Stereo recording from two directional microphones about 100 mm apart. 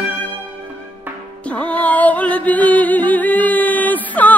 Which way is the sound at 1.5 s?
15° left (ahead or behind).